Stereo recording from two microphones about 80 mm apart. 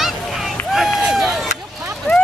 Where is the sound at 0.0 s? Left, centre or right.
Centre.